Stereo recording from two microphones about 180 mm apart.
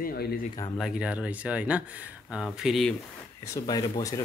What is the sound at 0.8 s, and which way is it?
Speech, 5° right (ahead or behind).